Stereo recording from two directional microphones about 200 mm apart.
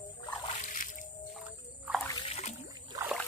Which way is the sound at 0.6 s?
40° left (ahead or behind).